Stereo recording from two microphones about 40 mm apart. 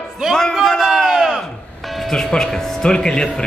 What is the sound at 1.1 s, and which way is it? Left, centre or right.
Crowd, centre.